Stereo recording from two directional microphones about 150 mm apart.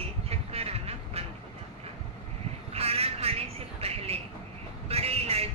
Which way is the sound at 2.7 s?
40° right (ahead or behind).